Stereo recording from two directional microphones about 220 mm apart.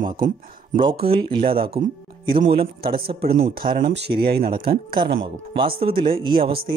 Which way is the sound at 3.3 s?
40° right (ahead or behind).